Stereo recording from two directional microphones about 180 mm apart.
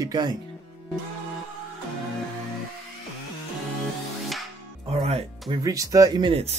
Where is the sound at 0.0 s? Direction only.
25° right (ahead or behind).